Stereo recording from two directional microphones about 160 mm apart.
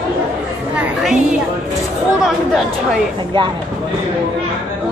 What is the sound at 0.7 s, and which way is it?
Chatter, 5° right (ahead or behind).